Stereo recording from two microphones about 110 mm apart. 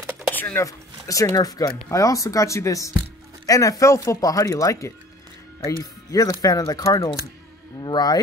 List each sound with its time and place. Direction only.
0.3 s speech: 15° left (ahead or behind)
1.0 s speech: 30° left (ahead or behind)
6.1 s speech: 35° left (ahead or behind)